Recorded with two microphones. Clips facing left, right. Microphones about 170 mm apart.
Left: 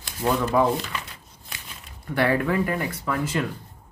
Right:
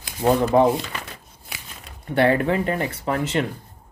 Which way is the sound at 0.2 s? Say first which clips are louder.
Right 5 dB; 35° right (ahead or behind).